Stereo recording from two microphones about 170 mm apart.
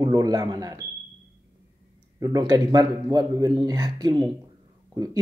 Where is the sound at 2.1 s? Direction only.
20° right (ahead or behind).